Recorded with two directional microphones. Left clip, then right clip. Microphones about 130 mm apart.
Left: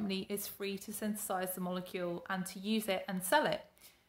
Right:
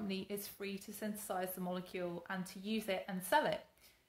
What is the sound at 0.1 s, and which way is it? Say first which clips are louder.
Speech: left 4 dB; 35° left (ahead or behind).